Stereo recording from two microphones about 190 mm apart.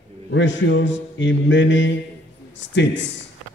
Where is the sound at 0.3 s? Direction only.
75° left (ahead or behind).